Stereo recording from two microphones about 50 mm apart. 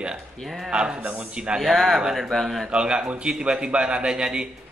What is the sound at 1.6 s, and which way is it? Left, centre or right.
Speech, centre.